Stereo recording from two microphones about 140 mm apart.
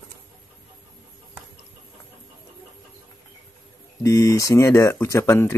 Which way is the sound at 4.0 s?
25° left (ahead or behind).